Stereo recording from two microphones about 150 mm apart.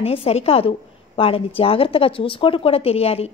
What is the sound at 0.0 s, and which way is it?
A woman's voice, 40° left (ahead or behind).